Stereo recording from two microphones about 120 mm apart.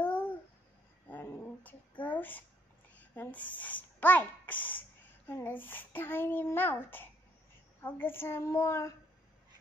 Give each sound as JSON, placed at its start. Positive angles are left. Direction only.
{"t": 0.0, "sound": "babbling", "side_deg": 15}
{"t": 1.0, "sound": "a sound", "side_deg": 15}
{"t": 3.0, "sound": "a woman's voice", "side_deg": 15}